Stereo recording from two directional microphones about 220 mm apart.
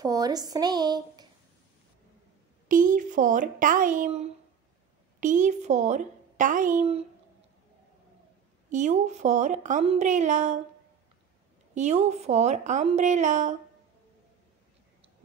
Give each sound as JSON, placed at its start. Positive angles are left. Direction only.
{"t": 0.0, "sound": "a woman's voice", "side_deg": -15}
{"t": 2.7, "sound": "a woman's voice", "side_deg": -35}
{"t": 8.6, "sound": "a woman's voice", "side_deg": -35}
{"t": 11.7, "sound": "a woman's voice", "side_deg": -30}